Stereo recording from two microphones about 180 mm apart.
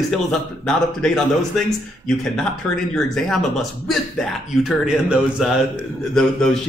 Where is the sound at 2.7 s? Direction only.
Centre (ahead or behind).